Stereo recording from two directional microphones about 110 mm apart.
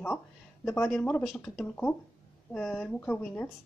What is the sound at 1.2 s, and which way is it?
Speech, 5° right (ahead or behind).